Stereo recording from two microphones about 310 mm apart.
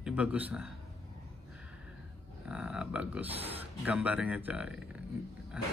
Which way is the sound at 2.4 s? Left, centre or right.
Centre.